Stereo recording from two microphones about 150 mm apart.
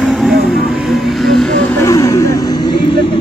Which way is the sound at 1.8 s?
20° left (ahead or behind).